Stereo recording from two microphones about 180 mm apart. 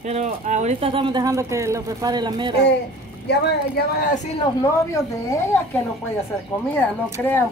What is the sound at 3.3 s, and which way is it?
Speech, 60° left (ahead or behind).